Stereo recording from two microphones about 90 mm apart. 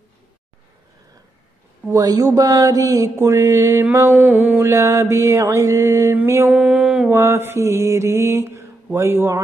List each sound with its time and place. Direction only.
1.9 s mantra: 40° right (ahead or behind)
6.5 s a sound: 15° right (ahead or behind)
7.1 s mantra: 30° right (ahead or behind)